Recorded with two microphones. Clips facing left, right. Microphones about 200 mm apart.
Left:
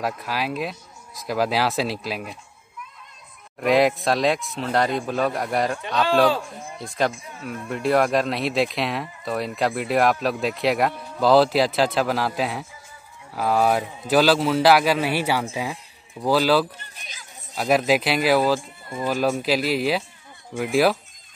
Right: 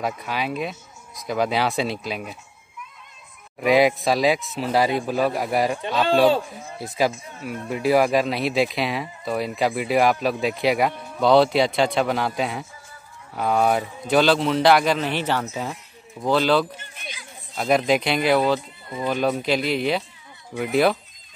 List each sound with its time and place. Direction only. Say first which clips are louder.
0.0 s speech: even; centre (ahead or behind)
3.5 s speech: right 1 dB; centre (ahead or behind)
16.8 s chatter: right 5 dB; 40° left (ahead or behind)
17.6 s speech: even; 5° left (ahead or behind)